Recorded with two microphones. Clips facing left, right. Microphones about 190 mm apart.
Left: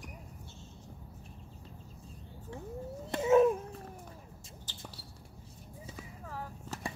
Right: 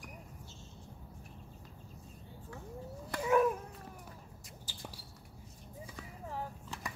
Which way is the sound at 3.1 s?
25° left (ahead or behind).